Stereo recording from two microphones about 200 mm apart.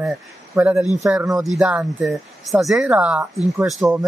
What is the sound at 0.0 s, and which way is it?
A man's voice, 5° right (ahead or behind).